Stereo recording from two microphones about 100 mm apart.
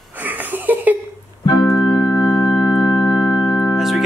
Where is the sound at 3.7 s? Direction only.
Centre (ahead or behind).